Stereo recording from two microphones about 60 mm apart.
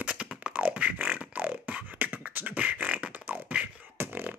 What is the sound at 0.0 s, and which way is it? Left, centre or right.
Beatboxing, centre.